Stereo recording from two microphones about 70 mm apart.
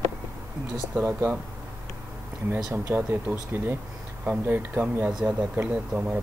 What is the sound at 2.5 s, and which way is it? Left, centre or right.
Speech, right.